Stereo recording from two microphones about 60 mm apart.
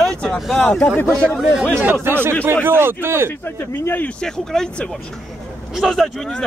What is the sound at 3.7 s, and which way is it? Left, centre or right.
Speech, left.